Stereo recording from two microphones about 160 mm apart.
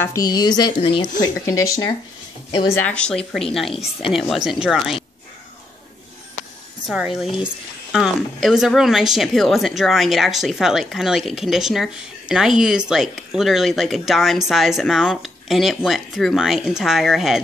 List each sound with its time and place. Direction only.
0.0 s a woman's voice: 20° left (ahead or behind)
1.2 s a woman's voice: 20° left (ahead or behind)
2.8 s speech: 5° left (ahead or behind)
6.9 s speech: centre (ahead or behind)